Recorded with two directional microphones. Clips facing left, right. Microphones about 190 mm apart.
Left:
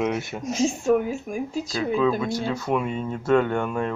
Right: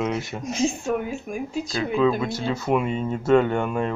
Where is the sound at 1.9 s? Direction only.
5° right (ahead or behind).